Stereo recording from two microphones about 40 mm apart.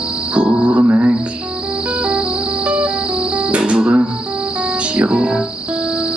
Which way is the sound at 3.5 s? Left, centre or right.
Right.